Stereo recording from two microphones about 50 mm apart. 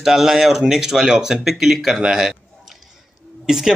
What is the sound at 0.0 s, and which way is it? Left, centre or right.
Speech, centre.